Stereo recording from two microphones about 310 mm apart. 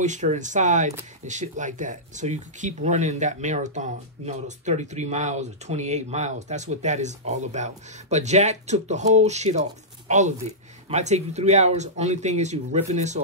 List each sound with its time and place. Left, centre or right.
0.0 s speech: right